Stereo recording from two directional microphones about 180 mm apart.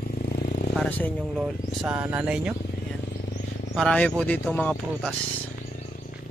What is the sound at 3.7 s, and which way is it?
Speech, 5° left (ahead or behind).